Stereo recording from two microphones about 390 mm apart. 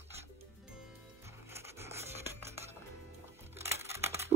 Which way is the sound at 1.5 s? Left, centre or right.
Centre.